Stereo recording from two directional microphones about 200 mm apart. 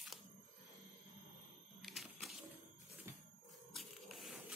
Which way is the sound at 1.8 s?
Centre (ahead or behind).